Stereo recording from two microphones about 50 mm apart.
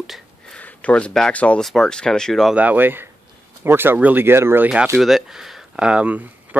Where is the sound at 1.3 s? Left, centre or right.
Left.